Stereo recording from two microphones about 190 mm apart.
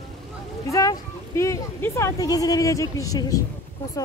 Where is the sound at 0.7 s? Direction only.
15° left (ahead or behind).